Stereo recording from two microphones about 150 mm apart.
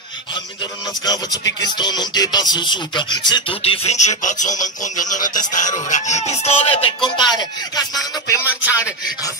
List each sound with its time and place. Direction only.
1.0 s music: 25° left (ahead or behind); by 5.2 s 55° left (ahead or behind)
5.4 s speech: 55° left (ahead or behind); by 8.4 s 25° left (ahead or behind)
8.5 s a sound: 10° right (ahead or behind)
8.7 s music: 20° left (ahead or behind)